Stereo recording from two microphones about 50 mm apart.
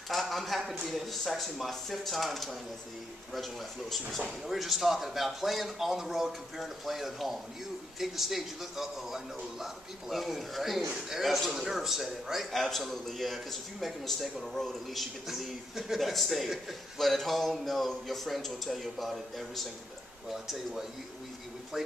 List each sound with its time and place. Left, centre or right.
0.1 s speech: centre
4.5 s speech: centre
21.7 s speech: centre